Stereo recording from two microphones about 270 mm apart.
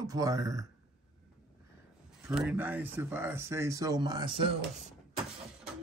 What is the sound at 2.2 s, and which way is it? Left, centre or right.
Speech, centre.